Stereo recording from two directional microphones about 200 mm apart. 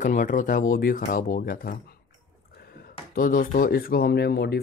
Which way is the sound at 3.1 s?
45° left (ahead or behind).